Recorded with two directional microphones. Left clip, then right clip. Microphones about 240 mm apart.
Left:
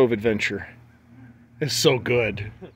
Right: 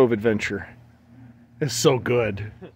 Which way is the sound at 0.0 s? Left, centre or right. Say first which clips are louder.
Even; centre.